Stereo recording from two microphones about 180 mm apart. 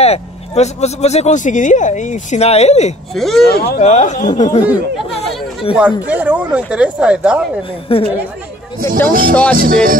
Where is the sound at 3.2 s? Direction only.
Centre (ahead or behind).